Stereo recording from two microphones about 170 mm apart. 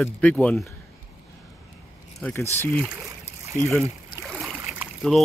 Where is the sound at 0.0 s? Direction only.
10° left (ahead or behind).